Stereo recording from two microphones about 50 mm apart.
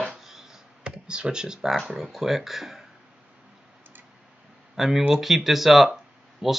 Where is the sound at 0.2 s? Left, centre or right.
Centre.